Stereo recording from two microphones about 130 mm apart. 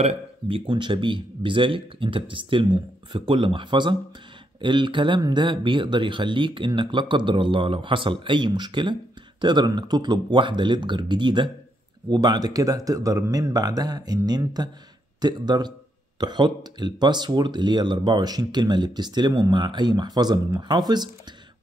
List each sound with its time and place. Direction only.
0.0 s speech: 45° right (ahead or behind)